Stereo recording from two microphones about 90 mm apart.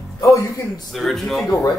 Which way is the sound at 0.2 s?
35° left (ahead or behind).